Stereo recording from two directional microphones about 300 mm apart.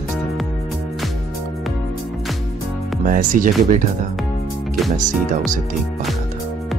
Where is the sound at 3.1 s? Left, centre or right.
Right.